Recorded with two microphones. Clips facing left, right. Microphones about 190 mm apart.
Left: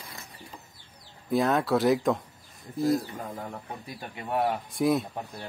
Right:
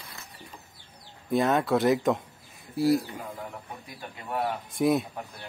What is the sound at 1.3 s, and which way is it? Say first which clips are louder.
Speech: even; centre (ahead or behind).